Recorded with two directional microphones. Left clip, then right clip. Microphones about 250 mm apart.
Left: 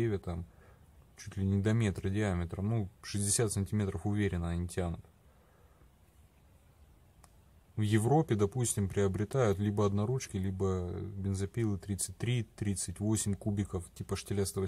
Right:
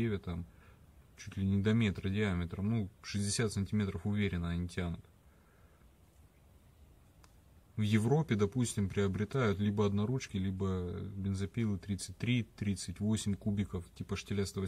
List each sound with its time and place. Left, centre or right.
0.0 s speech: left
7.7 s speech: left